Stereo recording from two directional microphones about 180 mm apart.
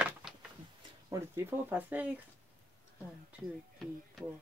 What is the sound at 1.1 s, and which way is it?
Speech, 10° right (ahead or behind).